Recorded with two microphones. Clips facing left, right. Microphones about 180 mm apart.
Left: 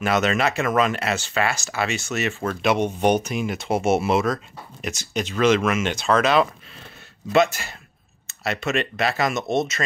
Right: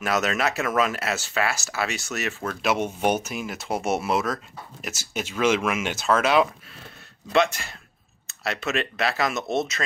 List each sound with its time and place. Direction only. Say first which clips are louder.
0.0 s speech: left 3 dB; centre (ahead or behind)
7.3 s speech: left 3 dB; 5° left (ahead or behind)